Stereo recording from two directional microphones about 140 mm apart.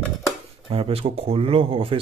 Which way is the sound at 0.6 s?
40° right (ahead or behind).